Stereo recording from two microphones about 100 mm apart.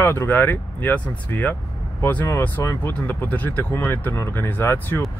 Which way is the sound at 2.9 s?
15° left (ahead or behind).